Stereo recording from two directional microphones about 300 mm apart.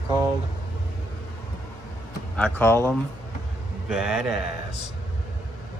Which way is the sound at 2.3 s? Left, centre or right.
Centre.